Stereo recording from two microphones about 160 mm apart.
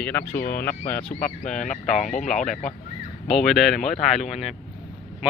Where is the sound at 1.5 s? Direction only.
50° left (ahead or behind).